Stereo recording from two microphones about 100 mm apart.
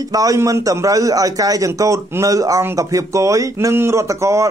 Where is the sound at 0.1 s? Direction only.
35° right (ahead or behind).